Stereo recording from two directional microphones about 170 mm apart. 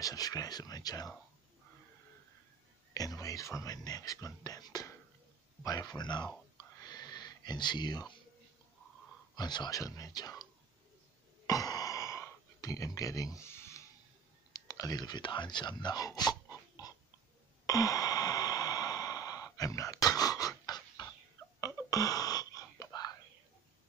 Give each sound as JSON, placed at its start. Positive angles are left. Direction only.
{"t": 0.0, "sound": "speech", "side_deg": 20}
{"t": 2.9, "sound": "speech", "side_deg": 20}
{"t": 6.8, "sound": "a sound", "side_deg": 25}
{"t": 9.3, "sound": "speech", "side_deg": 25}
{"t": 11.4, "sound": "a sound", "side_deg": 20}
{"t": 14.7, "sound": "speech", "side_deg": 20}
{"t": 17.6, "sound": "sigh", "side_deg": 20}
{"t": 21.5, "sound": "whispering", "side_deg": 20}